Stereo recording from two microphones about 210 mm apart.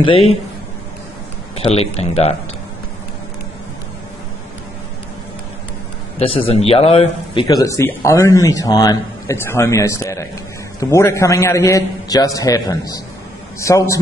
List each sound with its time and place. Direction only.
0.0 s speech: 25° left (ahead or behind)
1.6 s speech: 30° left (ahead or behind)
6.1 s speech: 25° left (ahead or behind)